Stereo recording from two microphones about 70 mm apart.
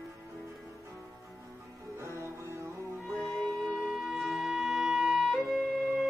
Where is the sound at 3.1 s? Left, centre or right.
Centre.